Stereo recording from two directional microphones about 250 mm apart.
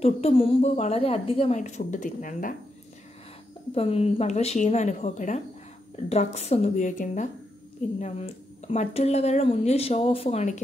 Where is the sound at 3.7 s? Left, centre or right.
Left.